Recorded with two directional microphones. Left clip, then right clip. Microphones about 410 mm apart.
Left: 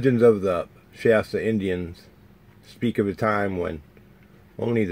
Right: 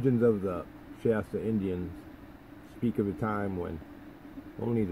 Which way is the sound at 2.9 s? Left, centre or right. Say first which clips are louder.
Left 10 dB; centre.